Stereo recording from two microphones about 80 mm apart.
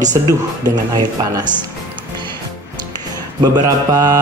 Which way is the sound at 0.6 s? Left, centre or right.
Right.